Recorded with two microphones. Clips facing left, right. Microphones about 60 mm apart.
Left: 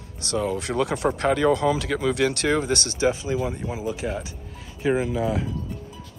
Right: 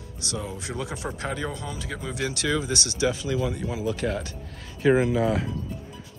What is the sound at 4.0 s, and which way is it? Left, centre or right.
Speech, centre.